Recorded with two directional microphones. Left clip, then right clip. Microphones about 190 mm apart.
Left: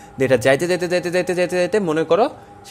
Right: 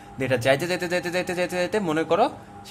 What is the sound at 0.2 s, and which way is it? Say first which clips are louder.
Speech: left 6 dB; 30° left (ahead or behind).